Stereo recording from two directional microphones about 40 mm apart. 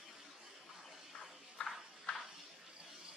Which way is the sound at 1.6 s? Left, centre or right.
Left.